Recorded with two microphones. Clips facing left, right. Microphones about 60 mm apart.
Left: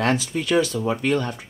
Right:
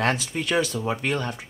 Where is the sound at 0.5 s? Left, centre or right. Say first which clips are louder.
Left 4 dB; centre.